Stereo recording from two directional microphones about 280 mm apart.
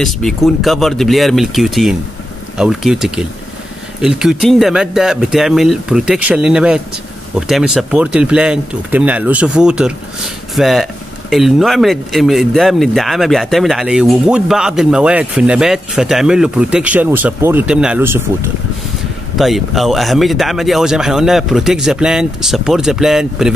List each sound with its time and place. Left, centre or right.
0.0 s speech: centre
19.3 s speech: centre